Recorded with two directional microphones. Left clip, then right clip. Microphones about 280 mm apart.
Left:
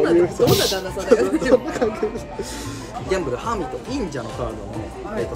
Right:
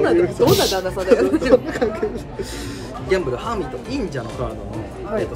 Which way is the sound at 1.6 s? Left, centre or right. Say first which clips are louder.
Right 1 dB; centre.